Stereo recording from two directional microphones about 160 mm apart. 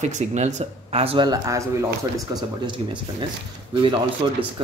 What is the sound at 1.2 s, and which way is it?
Speech, 20° right (ahead or behind).